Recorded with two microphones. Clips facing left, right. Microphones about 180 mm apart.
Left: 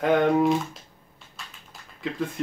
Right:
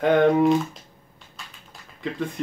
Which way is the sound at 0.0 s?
Centre (ahead or behind).